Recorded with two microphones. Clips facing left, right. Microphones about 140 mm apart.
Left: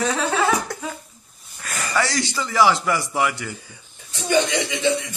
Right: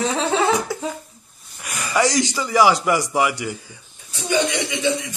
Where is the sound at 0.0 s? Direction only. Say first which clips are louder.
Right 1 dB; 25° right (ahead or behind).